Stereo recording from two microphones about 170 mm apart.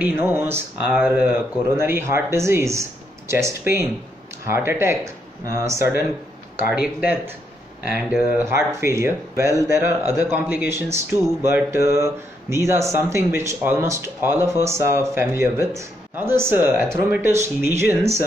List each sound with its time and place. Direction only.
0.0 s speech: 10° right (ahead or behind)